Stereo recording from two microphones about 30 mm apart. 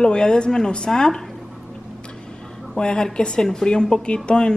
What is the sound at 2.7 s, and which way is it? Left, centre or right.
A woman's voice, left.